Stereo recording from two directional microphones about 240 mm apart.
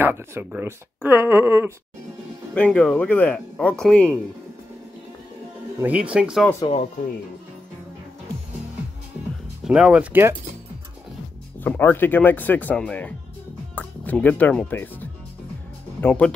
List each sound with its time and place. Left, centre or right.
0.0 s speech: centre
2.5 s speech: centre
5.8 s speech: centre
6.6 s speech: left
9.7 s speech: centre
11.6 s speech: centre